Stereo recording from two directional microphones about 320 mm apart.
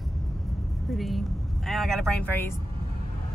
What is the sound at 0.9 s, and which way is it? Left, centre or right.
Speech, centre.